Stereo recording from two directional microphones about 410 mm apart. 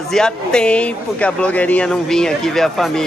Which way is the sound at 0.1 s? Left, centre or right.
Centre.